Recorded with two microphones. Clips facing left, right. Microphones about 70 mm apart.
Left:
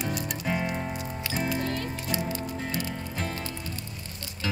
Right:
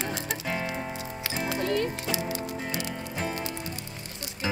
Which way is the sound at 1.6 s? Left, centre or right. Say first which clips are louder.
Right 4 dB; right.